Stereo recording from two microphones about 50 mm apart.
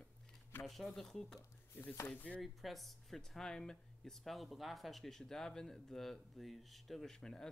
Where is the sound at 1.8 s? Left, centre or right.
Left.